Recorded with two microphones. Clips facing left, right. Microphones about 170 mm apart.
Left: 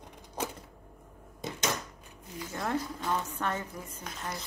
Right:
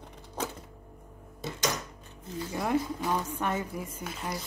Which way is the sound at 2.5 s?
10° right (ahead or behind).